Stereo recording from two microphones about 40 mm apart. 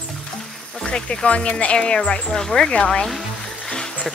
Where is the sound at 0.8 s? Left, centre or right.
Left.